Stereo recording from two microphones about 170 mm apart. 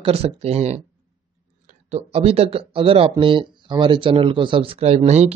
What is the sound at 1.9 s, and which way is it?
Speech, 35° right (ahead or behind).